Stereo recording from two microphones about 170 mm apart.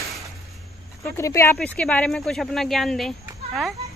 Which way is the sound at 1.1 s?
15° left (ahead or behind).